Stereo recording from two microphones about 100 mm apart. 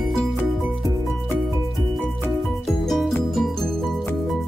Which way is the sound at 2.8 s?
Centre (ahead or behind).